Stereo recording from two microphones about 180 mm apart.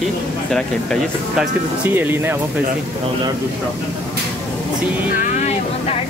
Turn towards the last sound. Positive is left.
turn(degrees=40)  # may be behind; listen again after turning